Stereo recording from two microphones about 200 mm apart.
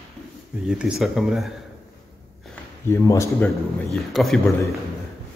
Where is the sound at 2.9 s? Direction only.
15° left (ahead or behind).